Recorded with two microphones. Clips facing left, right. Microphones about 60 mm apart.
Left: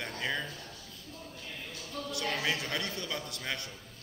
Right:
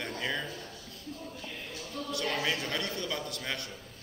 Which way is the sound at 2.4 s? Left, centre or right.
Centre.